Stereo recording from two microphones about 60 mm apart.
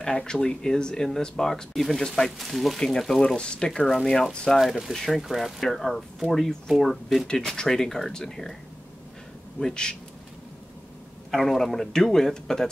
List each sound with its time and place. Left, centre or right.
0.0 s speech: centre
3.3 s speech: centre
7.2 s speech: centre
9.6 s speech: centre
11.3 s speech: centre